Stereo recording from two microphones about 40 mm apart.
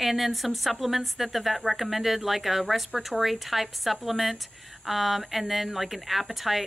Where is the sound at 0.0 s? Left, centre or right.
Centre.